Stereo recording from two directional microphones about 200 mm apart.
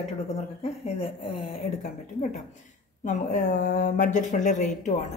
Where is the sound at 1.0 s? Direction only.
25° left (ahead or behind).